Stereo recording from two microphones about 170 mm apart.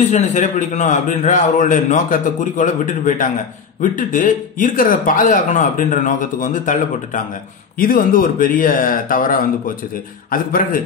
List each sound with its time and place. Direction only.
0.1 s speech: 45° left (ahead or behind)